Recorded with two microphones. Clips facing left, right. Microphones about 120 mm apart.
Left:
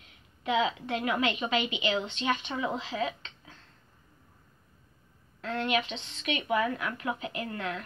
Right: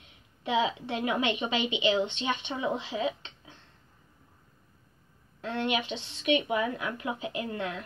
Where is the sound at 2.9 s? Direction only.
20° right (ahead or behind).